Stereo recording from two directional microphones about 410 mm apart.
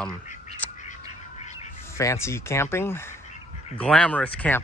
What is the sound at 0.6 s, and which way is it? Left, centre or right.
Bird, centre.